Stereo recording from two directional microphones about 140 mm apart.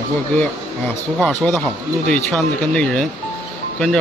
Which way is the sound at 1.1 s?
5° left (ahead or behind).